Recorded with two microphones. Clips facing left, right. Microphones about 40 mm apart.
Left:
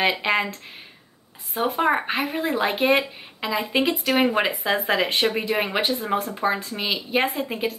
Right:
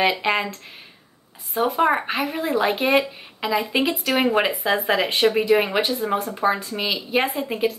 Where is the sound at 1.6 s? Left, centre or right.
Centre.